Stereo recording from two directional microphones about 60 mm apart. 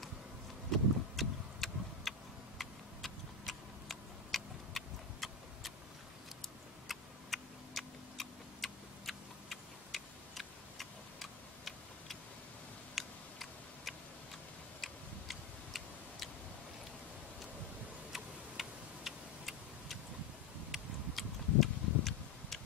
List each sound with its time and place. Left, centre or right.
0.7 s vehicle: centre
2.6 s tick-tock: centre
18.1 s tick-tock: centre